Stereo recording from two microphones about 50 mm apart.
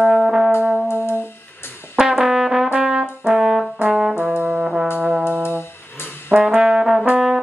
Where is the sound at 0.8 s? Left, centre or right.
Left.